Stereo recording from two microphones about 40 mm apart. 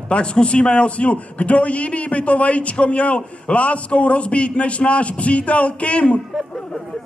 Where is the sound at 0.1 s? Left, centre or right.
Left.